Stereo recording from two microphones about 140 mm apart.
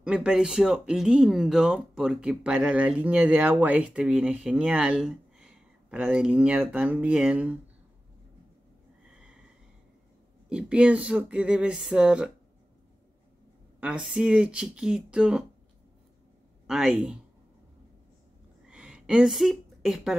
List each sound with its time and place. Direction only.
0.0 s speech: 5° right (ahead or behind)
10.5 s speech: 5° right (ahead or behind)
13.7 s speech: 5° right (ahead or behind)
16.6 s speech: 5° right (ahead or behind)
18.7 s a sound: 5° right (ahead or behind)